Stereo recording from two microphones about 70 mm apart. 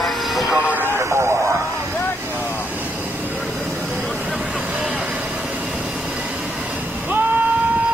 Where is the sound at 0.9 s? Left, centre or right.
Right.